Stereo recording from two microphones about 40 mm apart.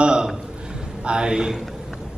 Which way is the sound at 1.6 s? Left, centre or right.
Centre.